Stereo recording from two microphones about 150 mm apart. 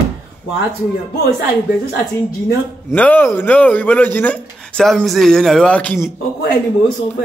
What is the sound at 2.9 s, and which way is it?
A man's voice, 10° left (ahead or behind).